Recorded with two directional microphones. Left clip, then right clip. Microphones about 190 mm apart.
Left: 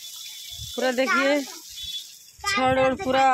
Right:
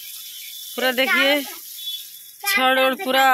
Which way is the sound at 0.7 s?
5° left (ahead or behind).